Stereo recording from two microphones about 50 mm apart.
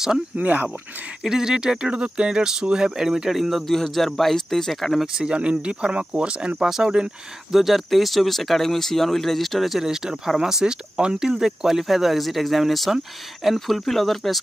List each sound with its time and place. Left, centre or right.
0.4 s speech: right
1.2 s speech: centre
5.0 s speech: centre
7.5 s speech: centre